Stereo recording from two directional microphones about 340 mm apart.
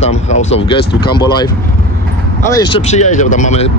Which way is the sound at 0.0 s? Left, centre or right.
Centre.